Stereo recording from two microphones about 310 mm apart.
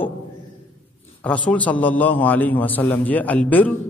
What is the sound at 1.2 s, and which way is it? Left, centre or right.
A man's voice, centre.